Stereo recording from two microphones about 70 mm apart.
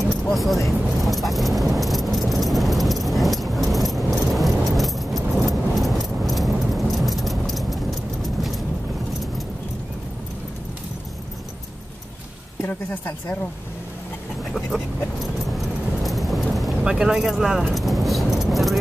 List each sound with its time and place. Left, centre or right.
0.0 s vehicle: centre
12.6 s speech: left
15.5 s vehicle: centre
16.8 s keys jangling: centre